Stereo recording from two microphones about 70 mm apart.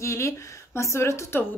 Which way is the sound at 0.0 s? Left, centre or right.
Left.